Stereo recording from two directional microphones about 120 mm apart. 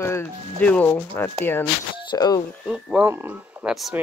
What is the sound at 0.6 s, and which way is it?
Speech, 10° left (ahead or behind).